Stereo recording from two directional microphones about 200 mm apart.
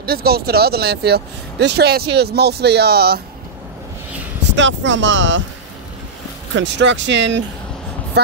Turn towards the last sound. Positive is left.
turn(degrees=-65)  # may be behind; listen again after turning